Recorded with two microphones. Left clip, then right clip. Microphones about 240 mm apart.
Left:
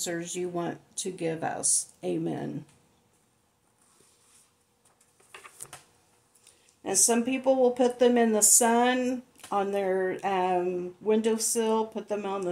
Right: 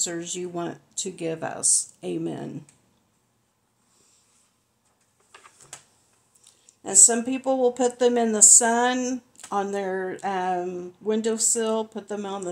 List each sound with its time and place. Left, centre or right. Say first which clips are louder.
0.0 s speech: right 2 dB; right
6.8 s speech: right 5 dB; right